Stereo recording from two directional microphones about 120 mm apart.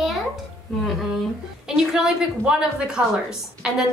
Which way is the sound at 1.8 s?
5° right (ahead or behind).